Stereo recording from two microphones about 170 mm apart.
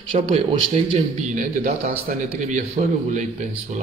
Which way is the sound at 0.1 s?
30° right (ahead or behind).